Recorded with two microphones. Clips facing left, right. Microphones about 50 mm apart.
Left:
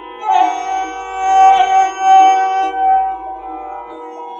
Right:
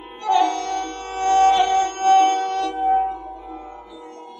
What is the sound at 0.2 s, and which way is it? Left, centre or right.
Music, left.